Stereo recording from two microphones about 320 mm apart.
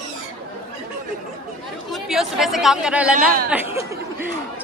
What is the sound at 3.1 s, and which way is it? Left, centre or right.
Speech, right.